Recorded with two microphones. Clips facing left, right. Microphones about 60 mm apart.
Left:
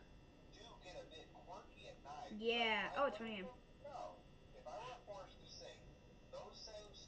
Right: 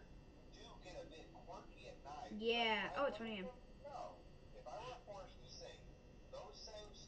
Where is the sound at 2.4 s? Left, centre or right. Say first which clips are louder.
Even; centre.